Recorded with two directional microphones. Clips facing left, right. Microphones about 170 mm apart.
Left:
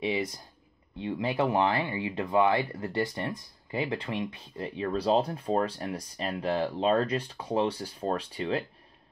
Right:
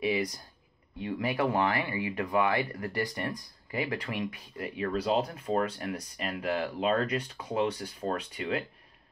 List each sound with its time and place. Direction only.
0.0 s speech: 25° left (ahead or behind)